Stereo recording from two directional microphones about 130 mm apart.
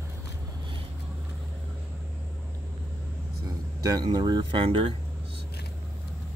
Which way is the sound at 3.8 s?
30° right (ahead or behind).